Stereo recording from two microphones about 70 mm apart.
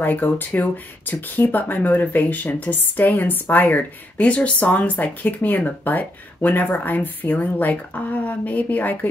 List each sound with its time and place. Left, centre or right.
0.0 s speech: left